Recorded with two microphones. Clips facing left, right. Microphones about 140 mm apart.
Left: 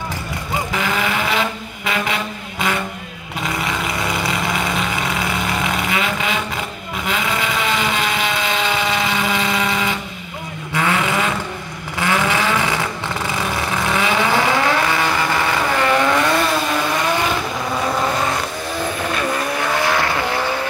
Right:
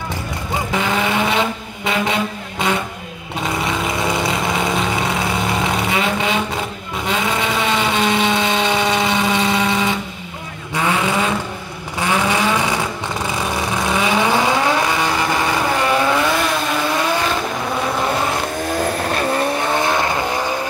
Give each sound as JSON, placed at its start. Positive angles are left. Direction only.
{"t": 0.8, "sound": "vehicle", "side_deg": -25}
{"t": 3.6, "sound": "vehicle", "side_deg": -25}
{"t": 19.1, "sound": "vehicle", "side_deg": -30}